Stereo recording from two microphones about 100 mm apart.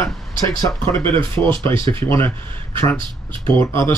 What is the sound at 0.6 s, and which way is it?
Speech, 30° left (ahead or behind).